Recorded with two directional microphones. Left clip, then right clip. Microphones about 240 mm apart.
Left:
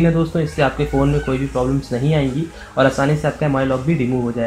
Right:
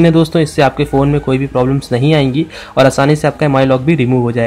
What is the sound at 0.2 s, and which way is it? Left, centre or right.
Speech, right.